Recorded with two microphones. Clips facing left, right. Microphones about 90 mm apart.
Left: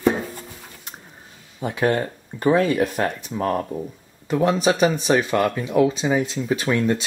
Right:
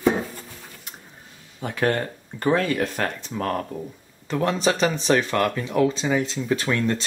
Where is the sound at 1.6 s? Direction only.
15° left (ahead or behind).